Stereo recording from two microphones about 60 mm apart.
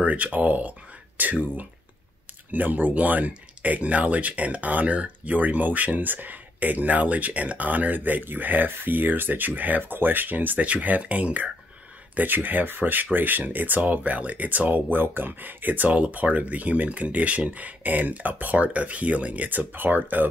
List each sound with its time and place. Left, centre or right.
0.0 s speech: right